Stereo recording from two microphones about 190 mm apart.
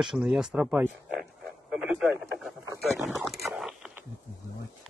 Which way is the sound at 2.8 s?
Centre (ahead or behind).